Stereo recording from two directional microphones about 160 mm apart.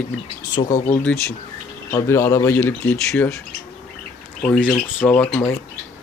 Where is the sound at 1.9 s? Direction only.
15° left (ahead or behind).